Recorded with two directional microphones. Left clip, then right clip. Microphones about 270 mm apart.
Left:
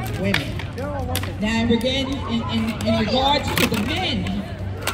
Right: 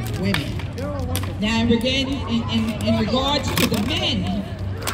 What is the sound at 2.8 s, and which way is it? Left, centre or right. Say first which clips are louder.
Speech: left 2 dB; right.